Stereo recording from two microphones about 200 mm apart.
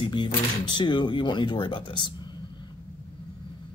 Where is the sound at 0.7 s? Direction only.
25° left (ahead or behind).